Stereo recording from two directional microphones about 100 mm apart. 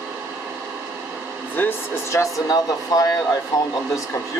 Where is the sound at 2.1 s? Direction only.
35° left (ahead or behind).